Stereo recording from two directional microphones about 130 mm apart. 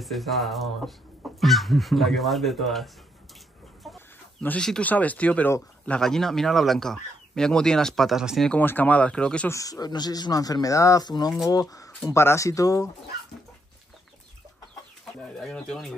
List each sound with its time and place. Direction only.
0.0 s speech: centre (ahead or behind)
3.8 s chicken: centre (ahead or behind)
4.4 s speech: 10° left (ahead or behind)
8.5 s speech: 15° left (ahead or behind)
9.5 s speech: 25° left (ahead or behind)
15.3 s speech: 5° left (ahead or behind)